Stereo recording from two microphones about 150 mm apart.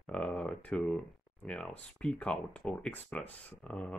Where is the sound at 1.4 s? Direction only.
5° left (ahead or behind).